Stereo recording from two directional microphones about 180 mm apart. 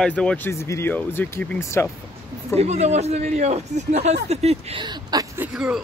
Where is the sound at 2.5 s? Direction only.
35° right (ahead or behind).